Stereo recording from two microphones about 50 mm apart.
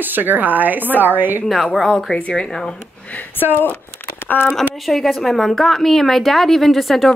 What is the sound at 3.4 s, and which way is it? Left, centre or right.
Speech, left.